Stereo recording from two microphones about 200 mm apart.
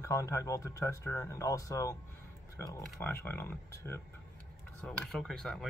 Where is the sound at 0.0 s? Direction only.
15° left (ahead or behind).